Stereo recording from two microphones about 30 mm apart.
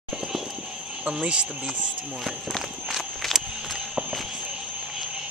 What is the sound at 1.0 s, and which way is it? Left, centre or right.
Speech, right.